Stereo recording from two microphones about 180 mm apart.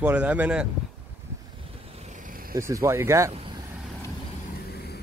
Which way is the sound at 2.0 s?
45° right (ahead or behind).